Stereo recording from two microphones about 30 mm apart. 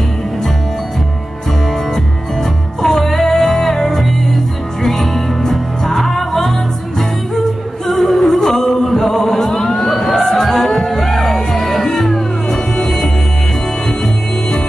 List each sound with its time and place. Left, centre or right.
2.8 s music: centre
3.3 s music: centre
7.8 s chant: centre
11.0 s music: centre